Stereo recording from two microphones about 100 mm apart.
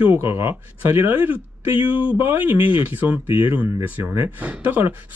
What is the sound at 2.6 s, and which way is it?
Speech, 60° left (ahead or behind).